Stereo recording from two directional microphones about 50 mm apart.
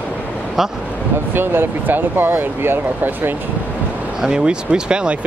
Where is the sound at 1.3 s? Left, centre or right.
Right.